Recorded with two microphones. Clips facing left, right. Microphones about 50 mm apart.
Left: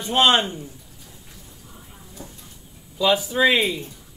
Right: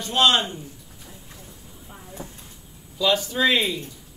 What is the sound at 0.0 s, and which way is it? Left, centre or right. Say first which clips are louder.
Speech: left 2 dB; left.